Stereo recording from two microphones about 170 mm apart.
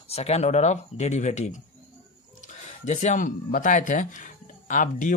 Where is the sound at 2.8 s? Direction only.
45° left (ahead or behind).